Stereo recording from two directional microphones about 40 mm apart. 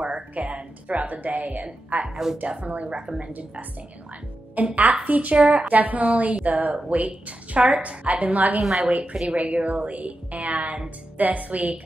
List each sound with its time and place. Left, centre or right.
0.0 s a sound: right
2.0 s a woman's voice: centre
2.4 s a woman's voice: right
4.6 s a woman's voice: right
8.5 s a woman's voice: centre
9.3 s a woman's voice: right